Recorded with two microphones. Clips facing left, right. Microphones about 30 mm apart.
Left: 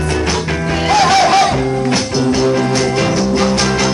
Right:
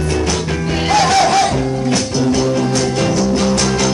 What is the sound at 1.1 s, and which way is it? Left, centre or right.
Music, centre.